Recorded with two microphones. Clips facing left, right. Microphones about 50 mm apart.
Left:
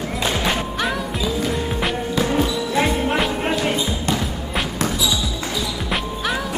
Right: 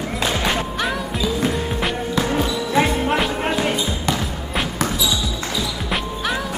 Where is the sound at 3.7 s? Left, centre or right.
Centre.